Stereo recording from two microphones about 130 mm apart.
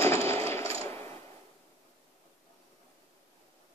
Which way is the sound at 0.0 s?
20° left (ahead or behind).